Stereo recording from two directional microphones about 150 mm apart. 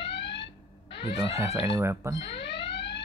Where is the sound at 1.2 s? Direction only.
20° right (ahead or behind).